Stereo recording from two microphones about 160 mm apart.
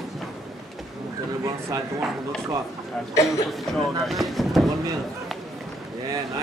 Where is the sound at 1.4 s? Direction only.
20° right (ahead or behind).